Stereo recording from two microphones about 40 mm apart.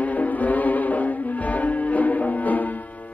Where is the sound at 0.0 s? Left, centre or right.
Left.